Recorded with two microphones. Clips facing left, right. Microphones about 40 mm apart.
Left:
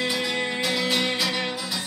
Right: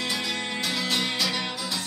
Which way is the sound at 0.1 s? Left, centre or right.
Centre.